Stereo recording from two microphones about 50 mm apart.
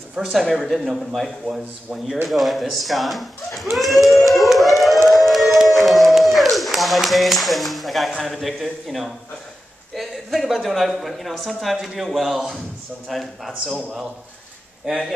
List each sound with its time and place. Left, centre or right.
0.2 s speech: centre
3.7 s a sound: centre
8.2 s speech: centre
13.1 s speech: centre
14.8 s speech: right